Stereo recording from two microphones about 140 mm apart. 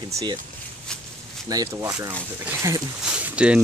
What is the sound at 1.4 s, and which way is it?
Speech, 25° right (ahead or behind).